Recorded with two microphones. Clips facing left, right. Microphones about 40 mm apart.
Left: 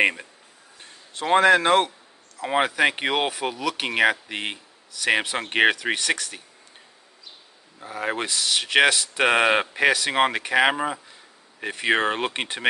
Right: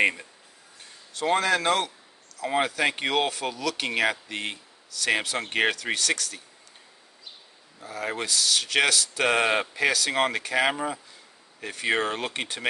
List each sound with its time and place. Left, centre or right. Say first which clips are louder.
0.0 s speech: left 2 dB; left
7.8 s speech: left 3 dB; left